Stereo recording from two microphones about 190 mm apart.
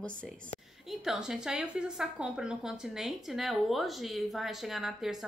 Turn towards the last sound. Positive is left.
turn(degrees=0)  # may be behind; listen again after turning